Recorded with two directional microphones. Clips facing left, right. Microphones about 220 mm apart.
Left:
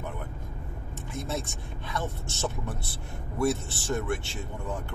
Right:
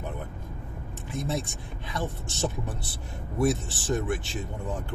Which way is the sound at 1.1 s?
15° right (ahead or behind).